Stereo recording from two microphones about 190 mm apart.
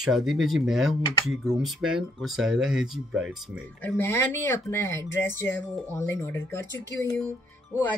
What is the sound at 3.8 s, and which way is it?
Speech, 10° left (ahead or behind).